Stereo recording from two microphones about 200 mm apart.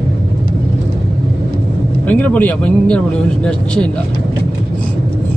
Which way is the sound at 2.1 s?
10° left (ahead or behind).